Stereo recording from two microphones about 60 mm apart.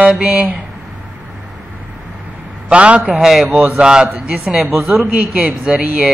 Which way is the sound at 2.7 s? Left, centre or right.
Centre.